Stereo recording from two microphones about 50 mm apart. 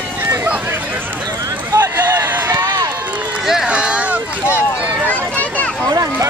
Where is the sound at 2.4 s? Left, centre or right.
Right.